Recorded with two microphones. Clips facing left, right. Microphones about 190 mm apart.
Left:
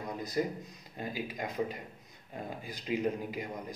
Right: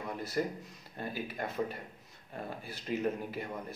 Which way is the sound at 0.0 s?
15° left (ahead or behind).